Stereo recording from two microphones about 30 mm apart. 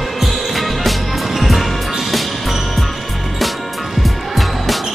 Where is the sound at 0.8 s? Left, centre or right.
Centre.